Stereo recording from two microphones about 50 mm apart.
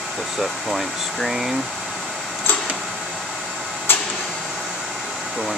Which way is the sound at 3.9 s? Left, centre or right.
Left.